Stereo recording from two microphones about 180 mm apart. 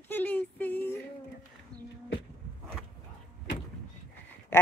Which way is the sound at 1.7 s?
25° right (ahead or behind).